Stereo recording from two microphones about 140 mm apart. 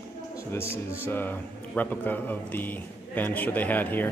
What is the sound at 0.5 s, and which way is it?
A man's voice, 20° left (ahead or behind).